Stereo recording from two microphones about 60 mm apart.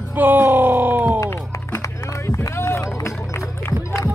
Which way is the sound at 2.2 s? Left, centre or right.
Left.